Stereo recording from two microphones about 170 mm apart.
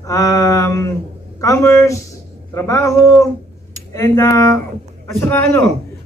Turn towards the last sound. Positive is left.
turn(degrees=5)  # may be behind; listen again after turning